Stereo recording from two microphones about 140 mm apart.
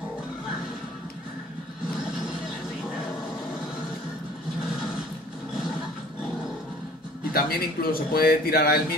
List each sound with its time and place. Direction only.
7.3 s speech: 90° left